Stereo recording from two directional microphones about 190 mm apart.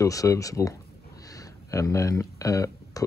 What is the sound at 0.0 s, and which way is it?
Speech, 15° left (ahead or behind).